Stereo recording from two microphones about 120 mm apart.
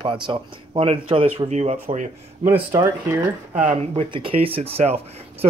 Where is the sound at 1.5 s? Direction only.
65° right (ahead or behind).